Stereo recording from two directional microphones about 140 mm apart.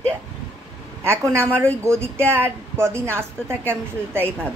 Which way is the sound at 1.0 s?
15° right (ahead or behind).